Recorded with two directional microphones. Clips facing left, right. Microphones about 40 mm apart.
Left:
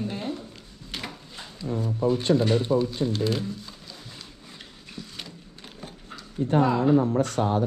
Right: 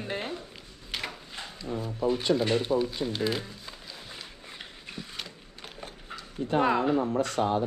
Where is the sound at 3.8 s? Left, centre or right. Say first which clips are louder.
Even; centre.